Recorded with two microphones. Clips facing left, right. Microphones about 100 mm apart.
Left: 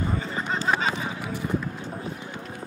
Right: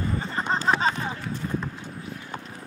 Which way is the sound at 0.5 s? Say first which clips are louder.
Right 2 dB; 35° right (ahead or behind).